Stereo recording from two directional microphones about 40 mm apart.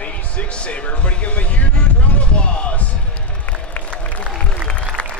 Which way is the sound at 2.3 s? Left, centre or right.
Left.